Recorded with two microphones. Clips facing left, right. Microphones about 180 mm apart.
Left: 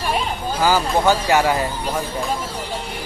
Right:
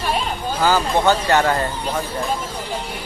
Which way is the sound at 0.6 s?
10° left (ahead or behind).